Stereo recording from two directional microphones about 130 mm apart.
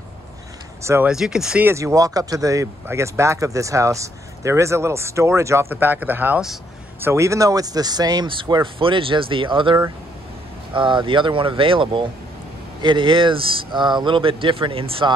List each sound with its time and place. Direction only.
1.0 s speech: 5° right (ahead or behind)
1.7 s speech: 20° right (ahead or behind); by 15.1 s 45° right (ahead or behind)